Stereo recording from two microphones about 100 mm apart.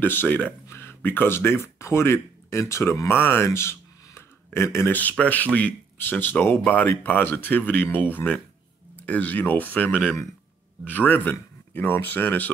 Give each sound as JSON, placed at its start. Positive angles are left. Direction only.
{"t": 0.0, "sound": "speech", "side_deg": 20}